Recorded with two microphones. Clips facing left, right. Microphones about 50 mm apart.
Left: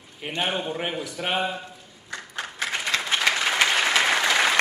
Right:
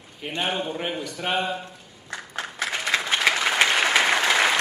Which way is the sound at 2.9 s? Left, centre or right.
Centre.